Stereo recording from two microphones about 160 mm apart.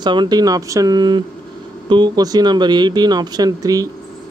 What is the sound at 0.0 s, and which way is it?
Speech, 30° right (ahead or behind).